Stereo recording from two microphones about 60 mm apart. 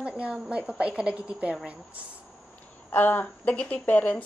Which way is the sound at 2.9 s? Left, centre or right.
Left.